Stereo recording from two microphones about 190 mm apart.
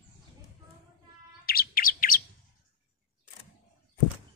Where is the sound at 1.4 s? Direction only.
50° left (ahead or behind).